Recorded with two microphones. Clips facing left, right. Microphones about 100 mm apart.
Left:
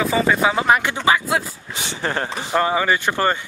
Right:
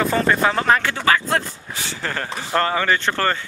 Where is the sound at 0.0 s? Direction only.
5° left (ahead or behind).